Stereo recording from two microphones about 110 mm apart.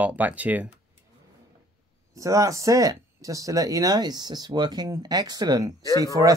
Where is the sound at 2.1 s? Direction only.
30° right (ahead or behind).